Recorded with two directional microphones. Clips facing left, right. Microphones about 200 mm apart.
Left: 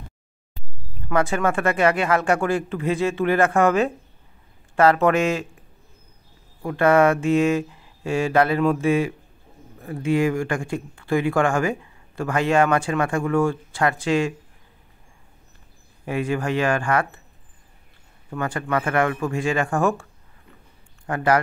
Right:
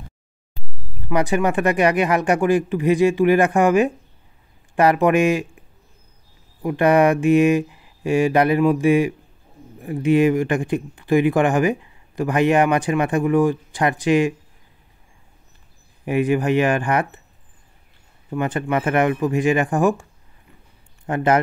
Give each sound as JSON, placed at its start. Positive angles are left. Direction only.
{"t": 1.0, "sound": "speech", "side_deg": -15}
{"t": 6.6, "sound": "speech", "side_deg": -15}
{"t": 16.1, "sound": "speech", "side_deg": -15}
{"t": 18.3, "sound": "a man's voice", "side_deg": -20}